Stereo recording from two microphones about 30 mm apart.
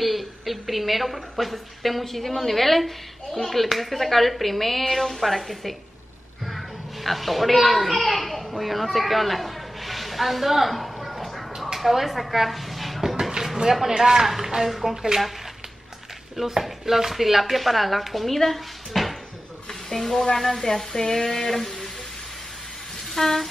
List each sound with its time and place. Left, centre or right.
0.0 s a woman's voice: centre
8.9 s a sound: centre
11.8 s speech: centre
13.0 s a sound: centre
13.8 s a man's voice: centre
14.2 s speech: centre
16.3 s speech: centre
23.1 s speech: centre